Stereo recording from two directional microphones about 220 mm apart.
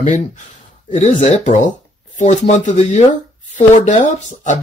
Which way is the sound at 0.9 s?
30° left (ahead or behind).